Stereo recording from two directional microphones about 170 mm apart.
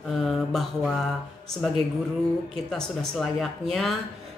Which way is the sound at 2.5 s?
5° left (ahead or behind).